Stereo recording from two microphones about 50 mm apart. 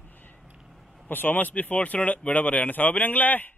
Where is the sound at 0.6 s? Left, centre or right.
Centre.